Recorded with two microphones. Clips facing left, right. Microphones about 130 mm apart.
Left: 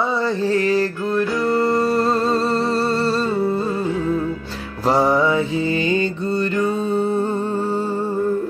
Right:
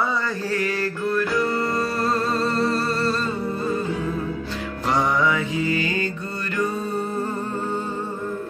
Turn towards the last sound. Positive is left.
turn(degrees=30)  # may be behind; listen again after turning